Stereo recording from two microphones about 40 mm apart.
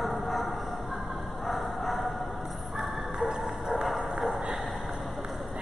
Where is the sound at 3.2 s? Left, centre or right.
Centre.